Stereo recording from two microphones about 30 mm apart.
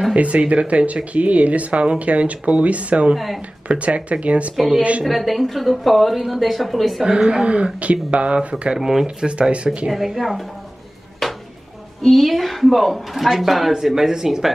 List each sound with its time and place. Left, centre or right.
0.1 s speech: right
3.2 s speech: centre
3.6 s speech: right
5.0 s speech: centre
7.1 s speech: right
7.4 s speech: right
8.7 s a woman's voice: centre
9.0 s speech: right
9.8 s a woman's voice: centre
11.2 s a sound: centre
12.2 s a woman's voice: centre